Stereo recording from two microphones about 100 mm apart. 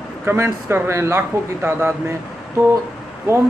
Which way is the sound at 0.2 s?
25° right (ahead or behind).